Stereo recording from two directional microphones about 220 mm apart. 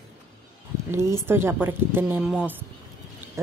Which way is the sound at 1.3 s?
10° right (ahead or behind).